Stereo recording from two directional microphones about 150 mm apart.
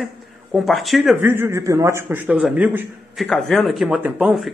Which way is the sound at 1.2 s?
15° right (ahead or behind).